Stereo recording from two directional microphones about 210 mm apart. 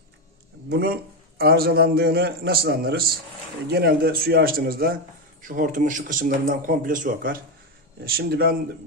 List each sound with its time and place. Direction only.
0.7 s a man's voice: 50° right (ahead or behind)